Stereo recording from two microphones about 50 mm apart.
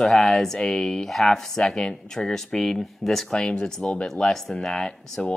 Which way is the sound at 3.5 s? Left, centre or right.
Centre.